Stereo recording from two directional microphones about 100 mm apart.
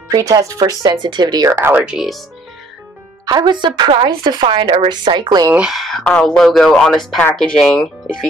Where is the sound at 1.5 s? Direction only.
25° right (ahead or behind).